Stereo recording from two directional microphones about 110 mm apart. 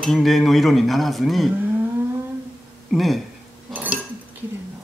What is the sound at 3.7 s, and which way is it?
Dishes, 15° right (ahead or behind).